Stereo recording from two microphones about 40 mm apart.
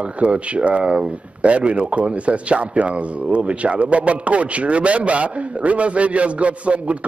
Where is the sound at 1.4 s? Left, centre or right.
Right.